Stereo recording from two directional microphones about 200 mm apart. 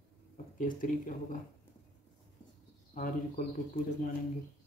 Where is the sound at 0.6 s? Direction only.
40° left (ahead or behind).